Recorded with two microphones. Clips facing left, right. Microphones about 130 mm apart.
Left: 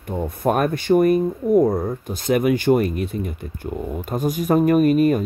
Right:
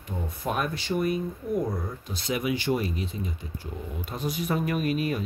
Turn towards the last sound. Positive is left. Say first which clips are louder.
# left 11 dB
turn(degrees=45)  # may be behind; listen again after turning